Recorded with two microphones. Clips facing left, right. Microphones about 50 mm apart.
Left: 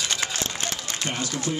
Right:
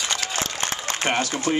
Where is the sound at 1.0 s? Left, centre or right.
Right.